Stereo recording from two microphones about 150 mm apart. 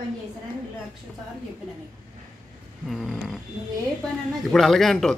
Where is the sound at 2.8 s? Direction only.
Centre (ahead or behind).